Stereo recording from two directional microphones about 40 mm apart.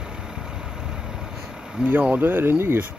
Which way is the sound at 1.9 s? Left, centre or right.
Right.